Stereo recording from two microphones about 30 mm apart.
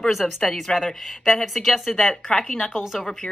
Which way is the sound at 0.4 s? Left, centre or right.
Centre.